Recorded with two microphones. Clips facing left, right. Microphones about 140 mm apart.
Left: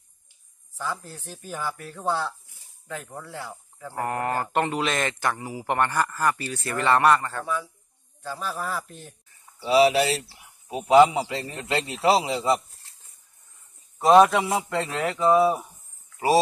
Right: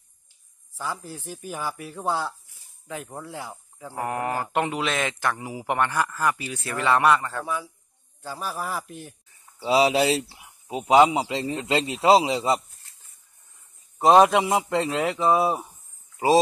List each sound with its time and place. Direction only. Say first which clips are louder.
0.7 s speech: even; 10° right (ahead or behind)
5.4 s speech: even; 15° right (ahead or behind)
5.8 s speech: left 1 dB; centre (ahead or behind)
9.6 s speech: left 1 dB; 20° right (ahead or behind)
14.1 s speech: left 1 dB; 20° right (ahead or behind)